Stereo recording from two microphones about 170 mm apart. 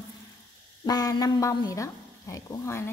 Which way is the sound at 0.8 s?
20° left (ahead or behind).